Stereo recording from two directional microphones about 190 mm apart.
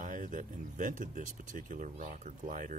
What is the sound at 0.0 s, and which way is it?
Speech, 45° right (ahead or behind).